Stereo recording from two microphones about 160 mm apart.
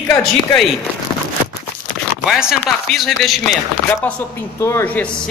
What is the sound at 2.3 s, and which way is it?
A woman's voice, centre (ahead or behind).